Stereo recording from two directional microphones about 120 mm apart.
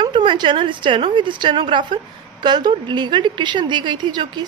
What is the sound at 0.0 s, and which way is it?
A woman's voice, 40° right (ahead or behind).